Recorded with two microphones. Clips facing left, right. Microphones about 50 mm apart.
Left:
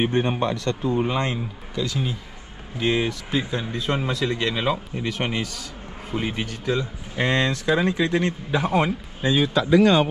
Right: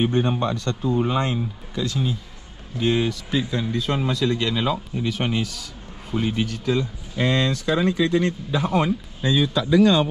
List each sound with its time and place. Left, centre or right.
0.0 s speech: left
2.8 s speech: left
7.2 s speech: left